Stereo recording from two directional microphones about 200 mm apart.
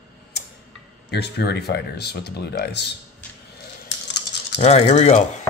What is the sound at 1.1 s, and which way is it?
Speech, 55° left (ahead or behind).